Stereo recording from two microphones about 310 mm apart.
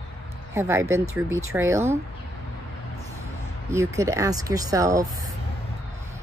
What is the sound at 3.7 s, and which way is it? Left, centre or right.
Speech, centre.